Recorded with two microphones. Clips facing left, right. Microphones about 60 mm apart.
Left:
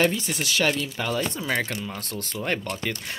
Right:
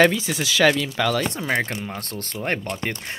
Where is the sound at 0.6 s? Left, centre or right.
Right.